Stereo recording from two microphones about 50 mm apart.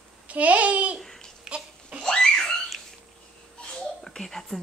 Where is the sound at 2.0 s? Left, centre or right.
Centre.